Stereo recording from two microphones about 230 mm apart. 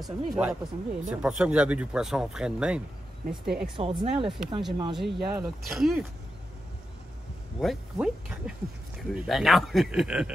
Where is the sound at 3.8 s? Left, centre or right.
Right.